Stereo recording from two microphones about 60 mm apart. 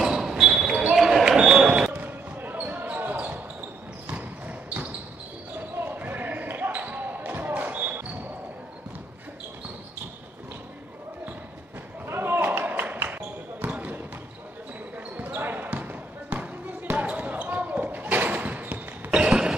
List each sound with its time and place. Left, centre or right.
0.0 s basketball bounce: centre
2.0 s basketball bounce: right
12.1 s basketball bounce: right
15.1 s basketball bounce: right
19.0 s a sound: centre